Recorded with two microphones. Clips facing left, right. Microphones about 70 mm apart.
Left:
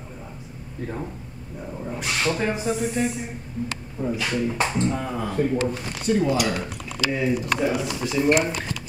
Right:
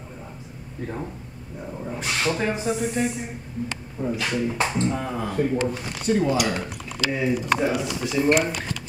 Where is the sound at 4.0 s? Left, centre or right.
Centre.